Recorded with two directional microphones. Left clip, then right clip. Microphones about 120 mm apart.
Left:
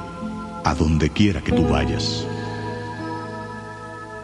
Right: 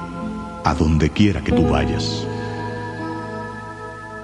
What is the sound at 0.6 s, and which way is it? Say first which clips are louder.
Speech: right 2 dB; 35° left (ahead or behind).